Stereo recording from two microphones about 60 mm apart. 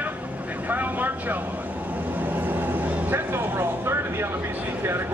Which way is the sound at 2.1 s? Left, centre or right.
Right.